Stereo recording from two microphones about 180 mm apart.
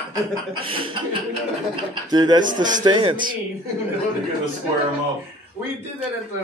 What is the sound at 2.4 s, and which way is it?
Speech, 45° right (ahead or behind).